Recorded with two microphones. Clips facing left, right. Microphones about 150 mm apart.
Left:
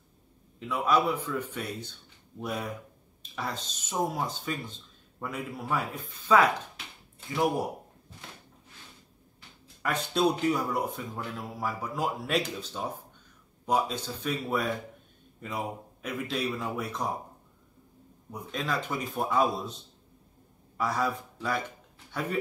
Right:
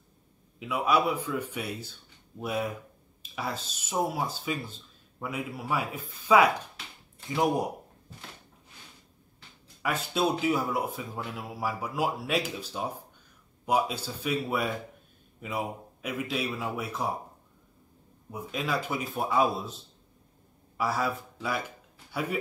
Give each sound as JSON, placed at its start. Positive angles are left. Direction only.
{"t": 0.6, "sound": "a man's voice", "side_deg": -10}
{"t": 9.8, "sound": "a man's voice", "side_deg": -5}
{"t": 18.3, "sound": "a man's voice", "side_deg": -5}